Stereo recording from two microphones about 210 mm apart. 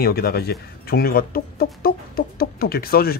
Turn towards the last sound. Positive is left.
turn(degrees=45)  # may be behind; listen again after turning